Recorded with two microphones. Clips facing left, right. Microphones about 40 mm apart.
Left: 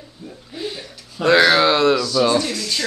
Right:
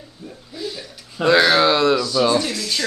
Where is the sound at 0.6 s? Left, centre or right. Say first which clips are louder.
Left 1 dB; left.